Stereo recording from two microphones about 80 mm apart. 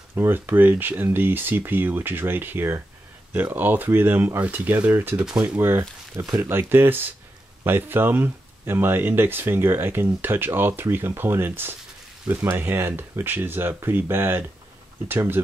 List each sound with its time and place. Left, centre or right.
0.1 s speech: right
5.3 s speech: centre
5.6 s speech: right